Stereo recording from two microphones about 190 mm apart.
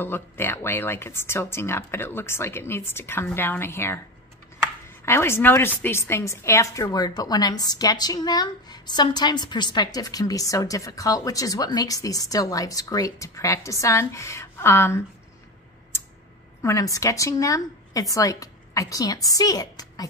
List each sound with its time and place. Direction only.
0.0 s speech: 10° left (ahead or behind)
5.0 s a woman's voice: 15° left (ahead or behind)
16.6 s speech: 15° left (ahead or behind)